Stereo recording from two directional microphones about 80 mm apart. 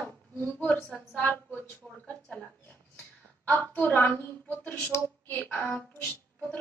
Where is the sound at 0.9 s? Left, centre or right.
Left.